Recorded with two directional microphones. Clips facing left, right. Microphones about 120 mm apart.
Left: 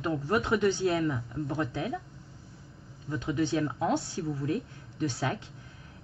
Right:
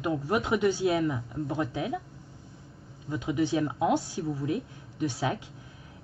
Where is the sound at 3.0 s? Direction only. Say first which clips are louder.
Right 1 dB; 15° right (ahead or behind).